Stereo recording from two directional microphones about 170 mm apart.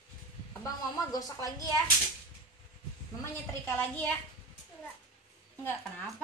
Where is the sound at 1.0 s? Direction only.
20° left (ahead or behind).